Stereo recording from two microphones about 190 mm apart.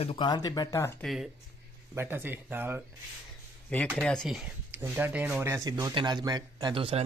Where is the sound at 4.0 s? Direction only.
5° left (ahead or behind).